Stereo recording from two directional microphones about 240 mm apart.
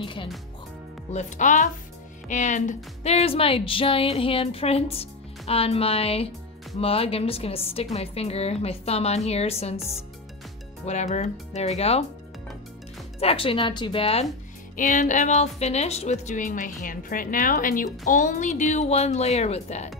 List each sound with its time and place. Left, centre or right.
0.0 s speech: left
1.1 s a woman's voice: left
10.9 s a woman's voice: left
13.2 s a woman's voice: left